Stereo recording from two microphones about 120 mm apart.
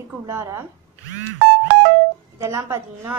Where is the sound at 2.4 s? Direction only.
25° right (ahead or behind).